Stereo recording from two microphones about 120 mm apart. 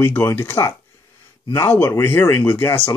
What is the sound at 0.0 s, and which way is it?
Speech, 20° left (ahead or behind).